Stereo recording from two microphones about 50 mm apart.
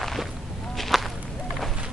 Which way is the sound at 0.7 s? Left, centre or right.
Centre.